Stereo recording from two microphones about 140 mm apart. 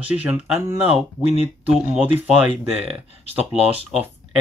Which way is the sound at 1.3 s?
50° left (ahead or behind).